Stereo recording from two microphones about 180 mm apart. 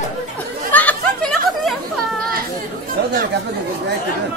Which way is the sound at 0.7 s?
5° left (ahead or behind).